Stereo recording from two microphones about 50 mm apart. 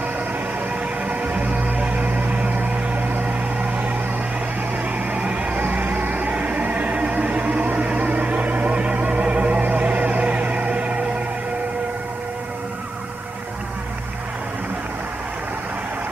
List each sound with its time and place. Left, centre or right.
1.0 s music: right
5.1 s a sound: right
7.6 s music: right